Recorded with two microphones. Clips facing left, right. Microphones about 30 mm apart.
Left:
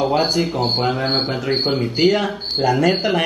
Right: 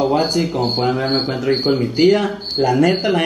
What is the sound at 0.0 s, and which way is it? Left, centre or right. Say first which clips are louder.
Speech: right 1 dB; centre.